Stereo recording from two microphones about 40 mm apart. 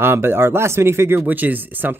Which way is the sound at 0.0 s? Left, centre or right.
Right.